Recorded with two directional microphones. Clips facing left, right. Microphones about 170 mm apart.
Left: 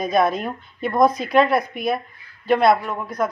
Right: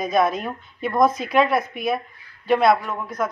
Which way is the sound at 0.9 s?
10° left (ahead or behind).